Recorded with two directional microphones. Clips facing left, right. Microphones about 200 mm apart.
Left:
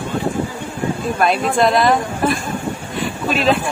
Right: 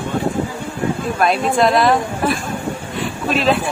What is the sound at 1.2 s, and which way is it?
A woman's voice, centre (ahead or behind).